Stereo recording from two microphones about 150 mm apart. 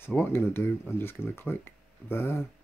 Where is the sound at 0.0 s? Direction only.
15° left (ahead or behind).